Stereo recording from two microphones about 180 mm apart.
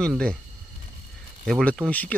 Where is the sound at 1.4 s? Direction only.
5° left (ahead or behind).